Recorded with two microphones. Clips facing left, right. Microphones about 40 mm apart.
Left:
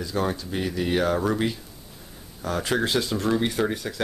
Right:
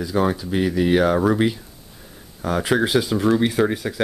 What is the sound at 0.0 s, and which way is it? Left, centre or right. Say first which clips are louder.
Speech: right 6 dB; centre.